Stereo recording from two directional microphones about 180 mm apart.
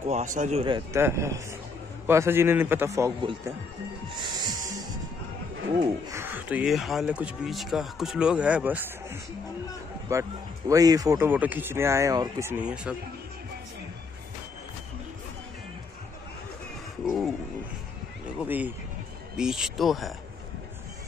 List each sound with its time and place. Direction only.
0.0 s speech: 40° right (ahead or behind)
0.7 s speech: 25° right (ahead or behind)
4.4 s music: 20° right (ahead or behind)
6.0 s speech: 15° right (ahead or behind)
17.0 s a sound: centre (ahead or behind)
18.4 s speech: 10° right (ahead or behind)